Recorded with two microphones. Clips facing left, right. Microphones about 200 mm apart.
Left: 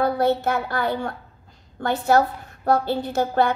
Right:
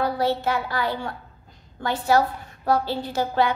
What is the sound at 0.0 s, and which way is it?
A woman's voice, 55° left (ahead or behind).